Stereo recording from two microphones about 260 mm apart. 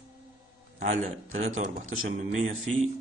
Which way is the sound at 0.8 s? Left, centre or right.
Right.